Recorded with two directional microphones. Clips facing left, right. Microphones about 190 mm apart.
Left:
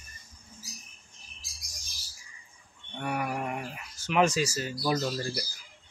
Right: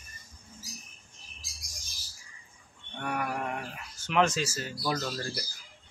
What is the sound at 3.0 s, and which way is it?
Speech, 5° left (ahead or behind).